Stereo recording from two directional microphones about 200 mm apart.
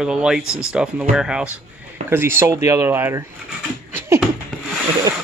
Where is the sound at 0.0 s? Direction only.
5° right (ahead or behind).